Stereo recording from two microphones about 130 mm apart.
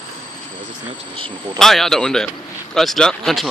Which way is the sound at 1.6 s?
5° left (ahead or behind).